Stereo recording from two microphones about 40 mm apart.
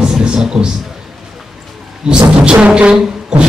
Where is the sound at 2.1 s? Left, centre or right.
Right.